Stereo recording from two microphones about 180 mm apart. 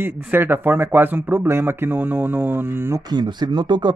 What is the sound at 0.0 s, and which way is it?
A man's voice, 10° right (ahead or behind).